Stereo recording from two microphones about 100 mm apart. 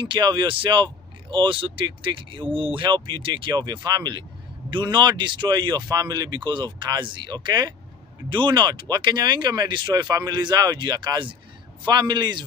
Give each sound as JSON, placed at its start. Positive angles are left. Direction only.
{"t": 0.0, "sound": "speech", "side_deg": -50}